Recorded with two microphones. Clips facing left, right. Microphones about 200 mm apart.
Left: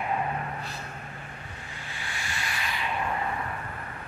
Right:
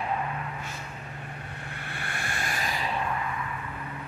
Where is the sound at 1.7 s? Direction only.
60° right (ahead or behind); by 2.9 s 40° right (ahead or behind).